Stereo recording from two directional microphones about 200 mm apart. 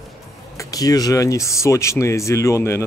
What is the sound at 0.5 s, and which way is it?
Speech, 20° left (ahead or behind).